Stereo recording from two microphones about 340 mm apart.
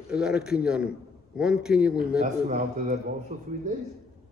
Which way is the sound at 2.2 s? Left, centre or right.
Centre.